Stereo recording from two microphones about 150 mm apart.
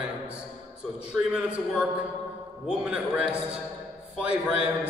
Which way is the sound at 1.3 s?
10° right (ahead or behind).